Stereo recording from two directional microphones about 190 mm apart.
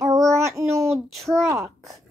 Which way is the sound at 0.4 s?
15° right (ahead or behind).